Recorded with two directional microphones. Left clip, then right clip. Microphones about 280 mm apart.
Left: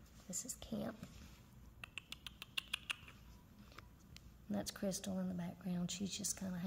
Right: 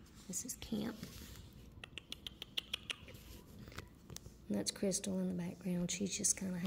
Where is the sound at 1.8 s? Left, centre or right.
Centre.